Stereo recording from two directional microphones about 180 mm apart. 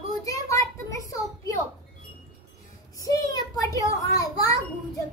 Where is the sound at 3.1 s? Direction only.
20° left (ahead or behind).